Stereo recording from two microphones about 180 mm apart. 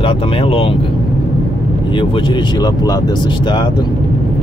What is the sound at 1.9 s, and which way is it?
Speech, 30° left (ahead or behind).